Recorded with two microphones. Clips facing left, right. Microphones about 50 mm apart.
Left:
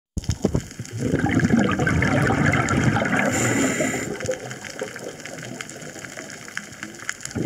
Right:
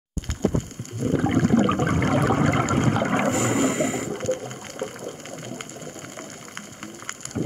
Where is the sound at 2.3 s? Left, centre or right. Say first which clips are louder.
Left 1 dB; left.